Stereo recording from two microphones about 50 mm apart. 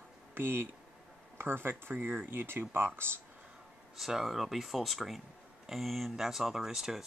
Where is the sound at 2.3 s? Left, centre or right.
Right.